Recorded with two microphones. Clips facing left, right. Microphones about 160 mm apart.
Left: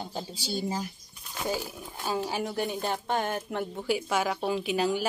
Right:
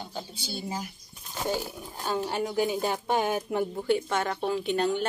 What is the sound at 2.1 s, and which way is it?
A woman's voice, 5° left (ahead or behind).